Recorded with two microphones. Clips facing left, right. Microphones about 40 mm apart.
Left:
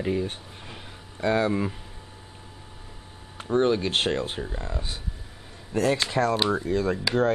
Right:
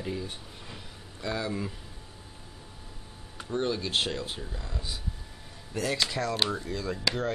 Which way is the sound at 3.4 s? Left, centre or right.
Left.